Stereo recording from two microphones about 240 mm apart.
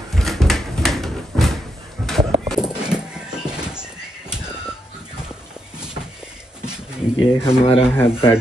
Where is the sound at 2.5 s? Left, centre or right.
Centre.